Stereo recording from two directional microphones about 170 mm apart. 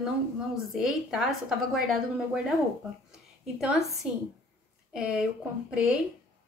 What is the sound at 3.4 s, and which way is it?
Speech, centre (ahead or behind).